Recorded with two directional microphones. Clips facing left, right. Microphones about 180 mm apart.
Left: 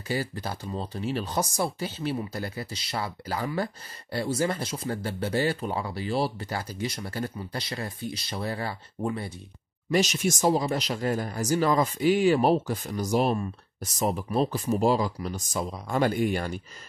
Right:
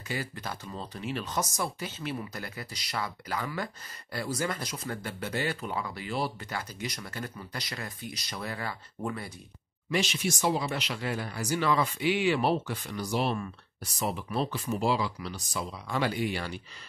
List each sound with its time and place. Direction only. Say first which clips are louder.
0.1 s speech: left 5 dB; 35° left (ahead or behind)
9.8 s speech: left 5 dB; 40° left (ahead or behind)